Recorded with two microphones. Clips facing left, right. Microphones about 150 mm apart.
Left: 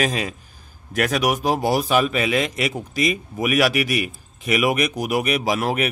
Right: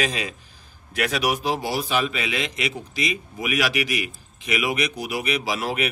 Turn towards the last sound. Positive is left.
turn(degrees=45)  # may be behind; listen again after turning